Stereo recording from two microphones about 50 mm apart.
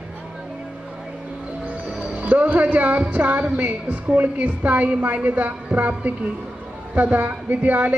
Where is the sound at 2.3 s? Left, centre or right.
Right.